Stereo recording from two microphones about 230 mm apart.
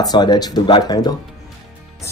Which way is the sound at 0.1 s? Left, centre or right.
Centre.